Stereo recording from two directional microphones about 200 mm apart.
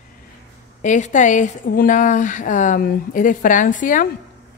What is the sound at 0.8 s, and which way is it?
A woman's voice, 40° left (ahead or behind).